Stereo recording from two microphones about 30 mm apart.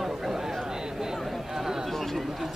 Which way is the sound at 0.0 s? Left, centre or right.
Centre.